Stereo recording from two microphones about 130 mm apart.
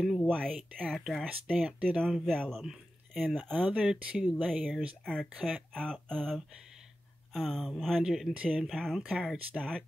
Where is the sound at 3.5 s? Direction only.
10° right (ahead or behind).